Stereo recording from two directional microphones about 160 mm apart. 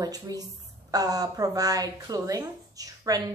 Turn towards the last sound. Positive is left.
turn(degrees=-20)  # may be behind; listen again after turning